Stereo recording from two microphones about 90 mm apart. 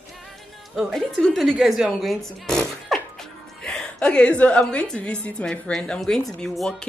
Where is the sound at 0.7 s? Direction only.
Centre (ahead or behind).